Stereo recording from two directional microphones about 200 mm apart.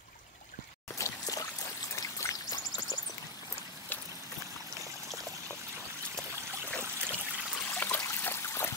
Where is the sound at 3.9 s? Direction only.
10° left (ahead or behind).